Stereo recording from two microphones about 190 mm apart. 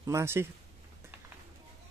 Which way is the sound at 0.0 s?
15° right (ahead or behind).